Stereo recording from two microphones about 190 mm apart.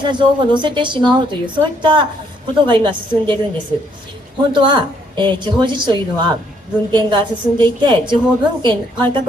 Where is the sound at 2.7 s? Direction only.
25° right (ahead or behind).